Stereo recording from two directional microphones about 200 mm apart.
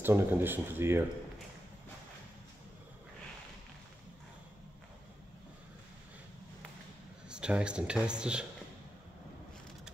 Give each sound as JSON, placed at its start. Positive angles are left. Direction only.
{"t": 0.0, "sound": "speech", "side_deg": -10}
{"t": 7.2, "sound": "speech", "side_deg": -5}